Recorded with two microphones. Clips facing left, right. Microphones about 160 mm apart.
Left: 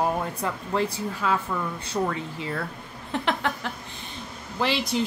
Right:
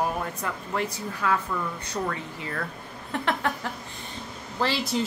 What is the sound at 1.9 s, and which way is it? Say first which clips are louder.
Speech: left 4 dB; 10° left (ahead or behind).